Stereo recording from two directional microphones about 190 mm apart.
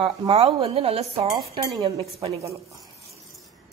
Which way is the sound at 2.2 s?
15° right (ahead or behind).